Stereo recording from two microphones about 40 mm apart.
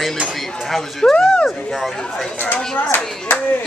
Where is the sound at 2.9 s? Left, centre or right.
Left.